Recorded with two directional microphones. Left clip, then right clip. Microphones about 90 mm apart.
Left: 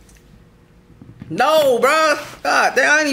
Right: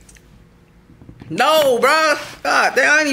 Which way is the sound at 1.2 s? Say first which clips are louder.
Even; 20° right (ahead or behind).